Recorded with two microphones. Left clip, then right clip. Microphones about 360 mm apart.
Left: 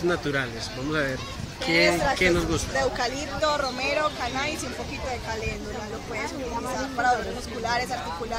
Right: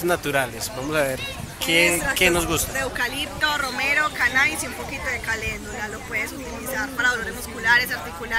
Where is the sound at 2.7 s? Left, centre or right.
Centre.